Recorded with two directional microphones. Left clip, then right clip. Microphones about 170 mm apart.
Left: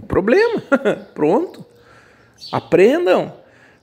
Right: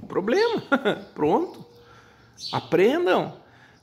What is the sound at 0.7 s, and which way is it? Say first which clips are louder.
Speech: left 6 dB; 15° left (ahead or behind).